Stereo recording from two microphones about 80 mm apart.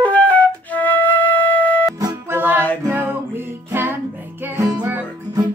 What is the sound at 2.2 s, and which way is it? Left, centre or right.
Music, right.